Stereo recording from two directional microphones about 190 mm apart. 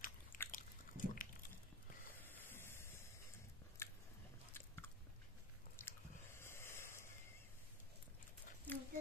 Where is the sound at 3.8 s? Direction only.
15° left (ahead or behind).